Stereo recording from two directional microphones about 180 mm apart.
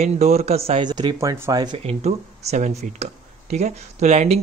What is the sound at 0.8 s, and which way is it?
Speech, 25° right (ahead or behind).